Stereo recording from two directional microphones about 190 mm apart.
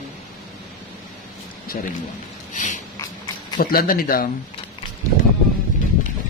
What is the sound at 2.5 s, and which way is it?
Snort, 40° left (ahead or behind).